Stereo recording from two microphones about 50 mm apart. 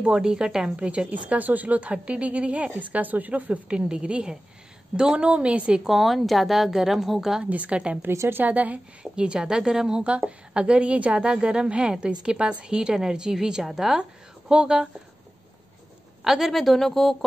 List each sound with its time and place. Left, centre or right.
0.0 s a woman's voice: centre
0.7 s a woman's voice: right
2.9 s a woman's voice: right
5.9 s a woman's voice: centre
7.4 s a woman's voice: right
9.0 s a woman's voice: centre
14.5 s a woman's voice: centre
16.3 s a woman's voice: centre